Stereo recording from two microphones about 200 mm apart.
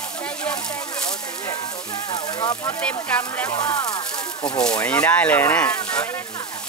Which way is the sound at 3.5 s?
20° left (ahead or behind).